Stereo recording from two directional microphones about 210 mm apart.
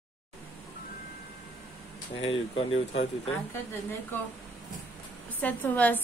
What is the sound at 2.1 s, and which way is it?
Speech, 25° left (ahead or behind).